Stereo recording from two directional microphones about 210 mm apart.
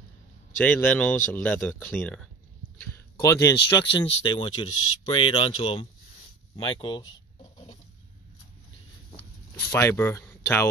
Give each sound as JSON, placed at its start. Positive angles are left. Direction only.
{"t": 0.6, "sound": "speech", "side_deg": 5}
{"t": 3.2, "sound": "speech", "side_deg": 15}
{"t": 4.6, "sound": "speech", "side_deg": 75}
{"t": 5.1, "sound": "speech", "side_deg": 25}
{"t": 9.7, "sound": "speech", "side_deg": 10}